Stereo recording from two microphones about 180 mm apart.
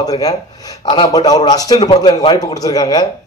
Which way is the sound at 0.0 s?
20° left (ahead or behind).